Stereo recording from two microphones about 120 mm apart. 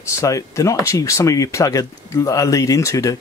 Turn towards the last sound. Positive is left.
turn(degrees=25)  # may be behind; listen again after turning